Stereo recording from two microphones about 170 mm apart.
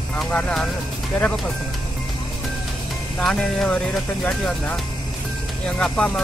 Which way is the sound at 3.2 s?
5° left (ahead or behind).